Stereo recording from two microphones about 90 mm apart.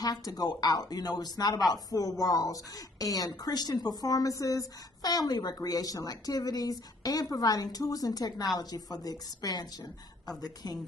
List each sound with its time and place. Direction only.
0.0 s speech: 45° left (ahead or behind)